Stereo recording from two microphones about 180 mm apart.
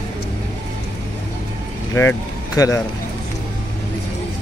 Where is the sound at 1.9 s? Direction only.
15° left (ahead or behind).